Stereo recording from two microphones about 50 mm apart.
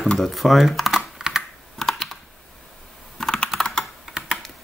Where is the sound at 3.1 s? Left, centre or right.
Centre.